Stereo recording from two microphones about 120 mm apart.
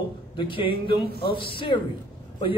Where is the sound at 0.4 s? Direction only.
45° left (ahead or behind).